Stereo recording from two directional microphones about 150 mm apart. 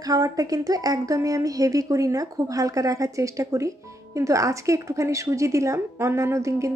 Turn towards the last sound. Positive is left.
turn(degrees=-20)  # may be behind; listen again after turning